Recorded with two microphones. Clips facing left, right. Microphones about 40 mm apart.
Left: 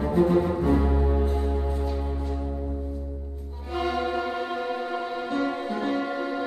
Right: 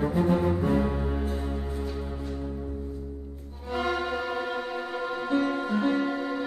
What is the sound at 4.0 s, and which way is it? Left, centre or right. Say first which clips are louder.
Music: left 2 dB; centre.